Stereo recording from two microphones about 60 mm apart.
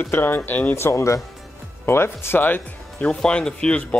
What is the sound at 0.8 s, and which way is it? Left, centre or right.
Speech, left.